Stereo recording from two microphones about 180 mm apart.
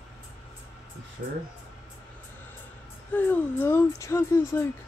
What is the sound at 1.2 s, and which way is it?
Speech, 50° right (ahead or behind).